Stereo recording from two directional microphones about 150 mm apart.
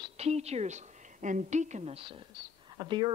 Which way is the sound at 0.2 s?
45° right (ahead or behind).